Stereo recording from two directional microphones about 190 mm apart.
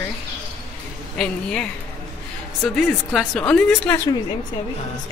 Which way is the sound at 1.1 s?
5° left (ahead or behind).